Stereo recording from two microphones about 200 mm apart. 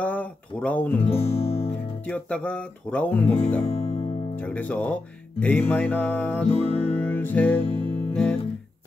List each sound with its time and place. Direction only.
0.0 s speech: 5° left (ahead or behind)
1.0 s music: 30° left (ahead or behind)
2.0 s guitar: 5° left (ahead or behind)
3.6 s speech: 35° left (ahead or behind)
4.4 s guitar: 10° left (ahead or behind)
6.5 s music: 30° left (ahead or behind)
6.8 s music: 10° left (ahead or behind)